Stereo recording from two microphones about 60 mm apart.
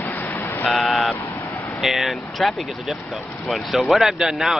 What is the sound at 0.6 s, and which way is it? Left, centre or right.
Speech, centre.